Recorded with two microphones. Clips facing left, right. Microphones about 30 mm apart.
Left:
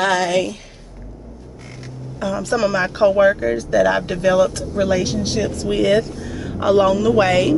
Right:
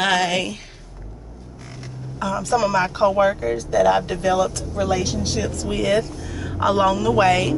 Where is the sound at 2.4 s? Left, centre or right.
Centre.